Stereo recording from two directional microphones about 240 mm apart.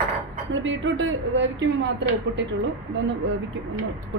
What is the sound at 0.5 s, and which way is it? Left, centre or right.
Speech, right.